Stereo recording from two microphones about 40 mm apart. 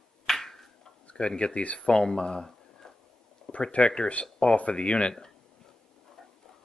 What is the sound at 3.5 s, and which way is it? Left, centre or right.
Speech, left.